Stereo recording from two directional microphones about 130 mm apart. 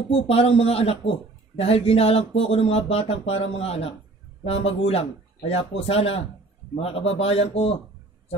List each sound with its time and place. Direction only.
0.1 s speech: 50° left (ahead or behind)